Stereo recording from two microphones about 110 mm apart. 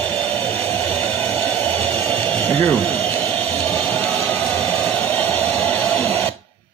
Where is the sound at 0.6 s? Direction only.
20° left (ahead or behind).